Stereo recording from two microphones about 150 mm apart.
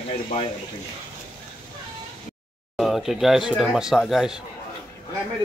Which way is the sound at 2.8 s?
Centre (ahead or behind).